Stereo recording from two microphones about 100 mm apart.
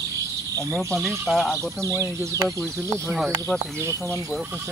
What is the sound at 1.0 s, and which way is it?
Speech, centre (ahead or behind).